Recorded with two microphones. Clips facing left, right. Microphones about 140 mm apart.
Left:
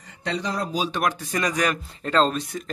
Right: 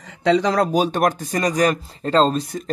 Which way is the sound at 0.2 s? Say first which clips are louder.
Right 10 dB; 90° right.